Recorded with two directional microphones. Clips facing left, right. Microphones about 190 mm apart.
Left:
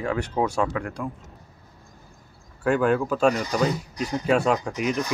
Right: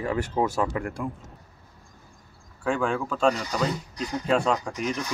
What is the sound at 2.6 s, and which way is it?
Speech, 5° left (ahead or behind).